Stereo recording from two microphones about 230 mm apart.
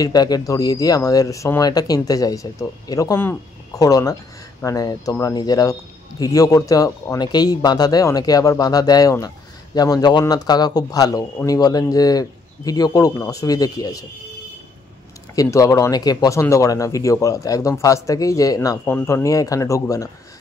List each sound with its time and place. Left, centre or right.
0.0 s speech: centre
15.3 s speech: centre